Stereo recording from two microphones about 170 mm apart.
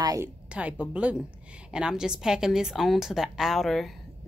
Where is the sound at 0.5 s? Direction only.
5° right (ahead or behind).